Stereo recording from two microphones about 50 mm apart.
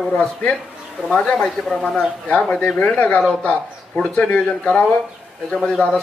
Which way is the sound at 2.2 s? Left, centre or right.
Left.